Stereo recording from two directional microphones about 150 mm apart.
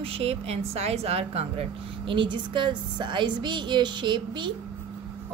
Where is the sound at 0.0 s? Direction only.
40° right (ahead or behind).